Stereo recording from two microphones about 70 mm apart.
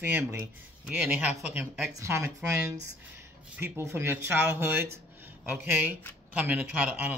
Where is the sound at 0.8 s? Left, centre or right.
Centre.